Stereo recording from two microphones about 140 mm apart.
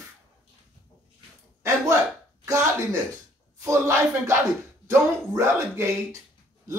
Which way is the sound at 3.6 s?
20° right (ahead or behind).